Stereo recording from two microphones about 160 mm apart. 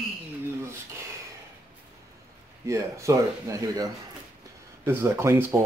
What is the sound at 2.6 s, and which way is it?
Speech, 20° right (ahead or behind).